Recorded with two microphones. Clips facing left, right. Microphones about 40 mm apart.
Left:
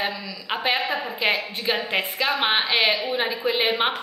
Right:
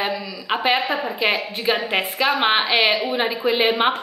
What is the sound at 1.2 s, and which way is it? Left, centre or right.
A woman's voice, centre.